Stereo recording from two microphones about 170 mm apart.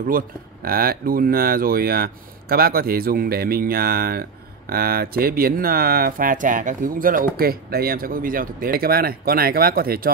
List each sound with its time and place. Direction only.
0.0 s speech: 60° right (ahead or behind)